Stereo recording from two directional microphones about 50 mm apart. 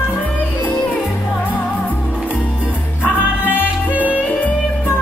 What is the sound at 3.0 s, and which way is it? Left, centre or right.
Music, left.